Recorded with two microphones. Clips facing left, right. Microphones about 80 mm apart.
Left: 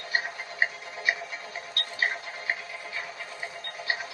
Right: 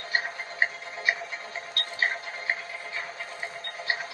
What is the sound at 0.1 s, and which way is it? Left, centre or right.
Music, right.